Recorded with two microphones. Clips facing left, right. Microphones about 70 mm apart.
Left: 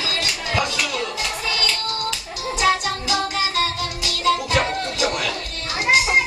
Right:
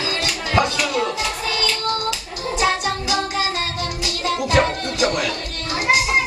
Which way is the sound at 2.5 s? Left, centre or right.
Right.